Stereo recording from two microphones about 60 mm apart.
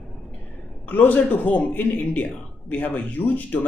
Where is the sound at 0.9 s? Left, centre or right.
Left.